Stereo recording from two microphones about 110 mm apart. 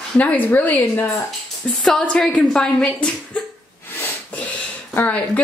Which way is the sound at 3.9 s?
15° left (ahead or behind).